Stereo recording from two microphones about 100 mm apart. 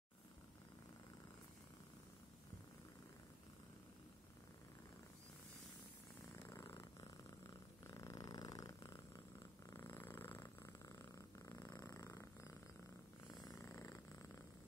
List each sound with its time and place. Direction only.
6.3 s purr: 30° left (ahead or behind)
9.7 s purr: 25° left (ahead or behind)
10.9 s purr: 30° left (ahead or behind)
13.6 s purr: 30° left (ahead or behind)